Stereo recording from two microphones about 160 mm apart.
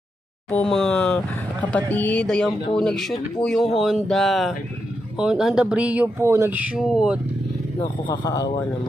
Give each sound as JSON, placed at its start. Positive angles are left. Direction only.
{"t": 0.5, "sound": "speech", "side_deg": 5}
{"t": 8.1, "sound": "speech", "side_deg": 30}